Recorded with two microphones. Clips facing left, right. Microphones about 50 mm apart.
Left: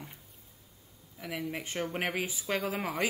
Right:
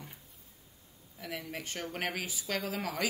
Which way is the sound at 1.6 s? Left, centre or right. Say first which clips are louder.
Left 2 dB; left.